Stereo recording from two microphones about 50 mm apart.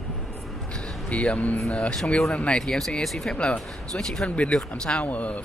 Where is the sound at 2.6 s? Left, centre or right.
Centre.